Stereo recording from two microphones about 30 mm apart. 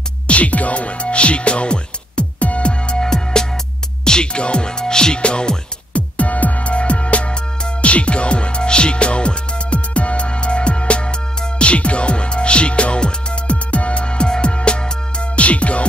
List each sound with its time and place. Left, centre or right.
0.3 s speech: left
2.4 s music: left
3.0 s music: left
4.0 s speech: left
5.2 s music: left
5.9 s music: left